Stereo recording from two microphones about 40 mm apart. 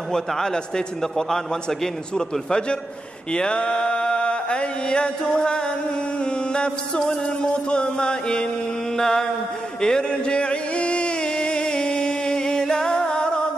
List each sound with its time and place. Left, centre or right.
0.3 s a man's voice: centre
3.3 s music: left
8.9 s a man's voice: centre
9.8 s a sound: centre